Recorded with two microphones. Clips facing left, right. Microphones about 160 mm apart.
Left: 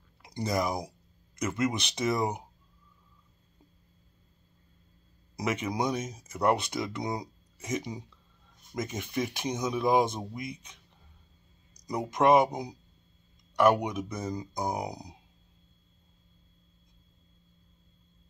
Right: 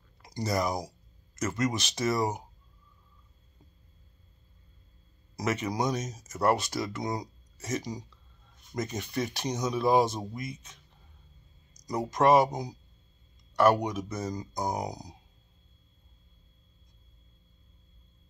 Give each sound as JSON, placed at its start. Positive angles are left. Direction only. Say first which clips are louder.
{"t": 0.4, "sound": "speech", "louder": "even", "side_deg": 10}
{"t": 5.4, "sound": "speech", "louder": "even", "side_deg": 10}
{"t": 11.9, "sound": "speech", "louder": "even", "side_deg": 10}